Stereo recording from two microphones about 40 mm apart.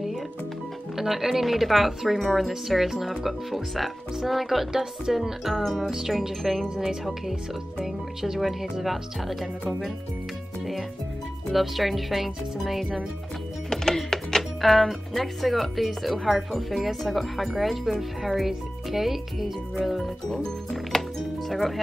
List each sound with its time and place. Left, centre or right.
0.9 s speech: centre
7.8 s speech: centre
11.5 s speech: centre
13.7 s speech: centre
20.2 s speech: centre